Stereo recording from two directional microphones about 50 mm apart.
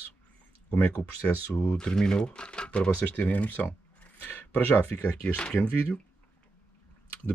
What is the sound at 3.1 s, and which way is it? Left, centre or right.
Speech, left.